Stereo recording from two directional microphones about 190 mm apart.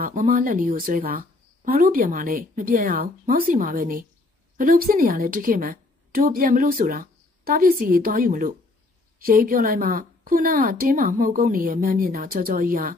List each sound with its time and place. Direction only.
0.0 s a woman's voice: 45° right (ahead or behind)